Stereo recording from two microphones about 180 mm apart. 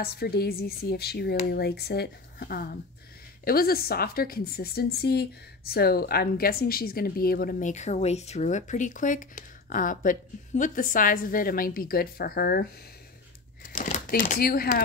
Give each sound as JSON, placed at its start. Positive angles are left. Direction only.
{"t": 0.0, "sound": "a woman's voice", "side_deg": 60}
{"t": 13.7, "sound": "speech", "side_deg": 45}